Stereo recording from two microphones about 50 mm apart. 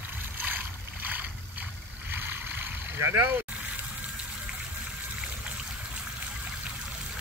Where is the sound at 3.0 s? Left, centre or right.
Right.